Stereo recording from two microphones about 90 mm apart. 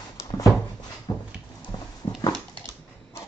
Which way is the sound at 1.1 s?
55° left (ahead or behind).